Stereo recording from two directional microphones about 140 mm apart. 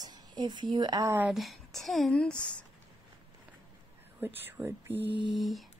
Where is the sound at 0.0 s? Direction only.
30° right (ahead or behind).